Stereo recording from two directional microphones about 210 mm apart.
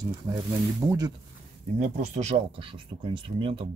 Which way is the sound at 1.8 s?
35° right (ahead or behind).